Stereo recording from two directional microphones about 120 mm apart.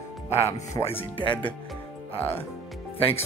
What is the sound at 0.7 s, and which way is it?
Speech, 20° left (ahead or behind).